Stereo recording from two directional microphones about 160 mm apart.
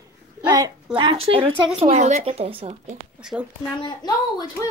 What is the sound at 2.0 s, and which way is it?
Speech, 50° right (ahead or behind).